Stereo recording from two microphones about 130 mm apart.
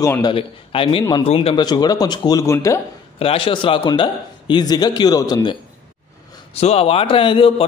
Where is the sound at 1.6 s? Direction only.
30° left (ahead or behind).